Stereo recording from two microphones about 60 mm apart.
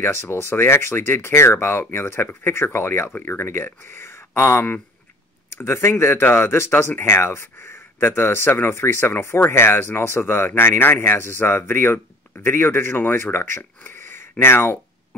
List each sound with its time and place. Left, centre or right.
0.0 s speech: left